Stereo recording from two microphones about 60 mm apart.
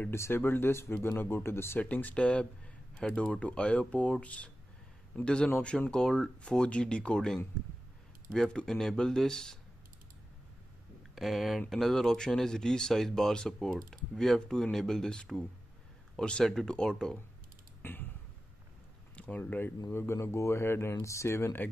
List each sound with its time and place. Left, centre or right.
0.1 s speech: left
1.8 s speech: left; by 9.6 s centre
11.1 s speech: centre
17.8 s a sound: left
19.1 s speech: left
19.9 s speech: left